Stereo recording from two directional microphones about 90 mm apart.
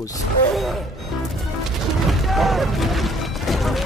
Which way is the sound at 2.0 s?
Centre (ahead or behind).